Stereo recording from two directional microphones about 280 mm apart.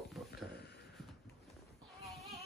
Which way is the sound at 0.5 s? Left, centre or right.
Left.